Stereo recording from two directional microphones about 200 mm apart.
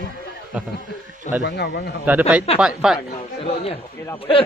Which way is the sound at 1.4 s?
60° left (ahead or behind).